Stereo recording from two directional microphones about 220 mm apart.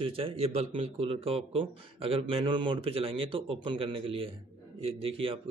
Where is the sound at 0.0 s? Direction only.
25° right (ahead or behind).